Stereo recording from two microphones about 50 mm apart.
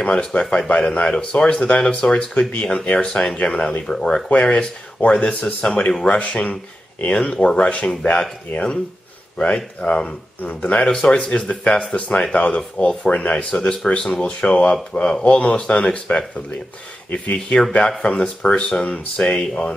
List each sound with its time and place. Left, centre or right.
0.1 s speech: centre
9.8 s speech: left
10.8 s speech: centre
13.1 s speech: left
13.6 s speech: centre
17.8 s speech: centre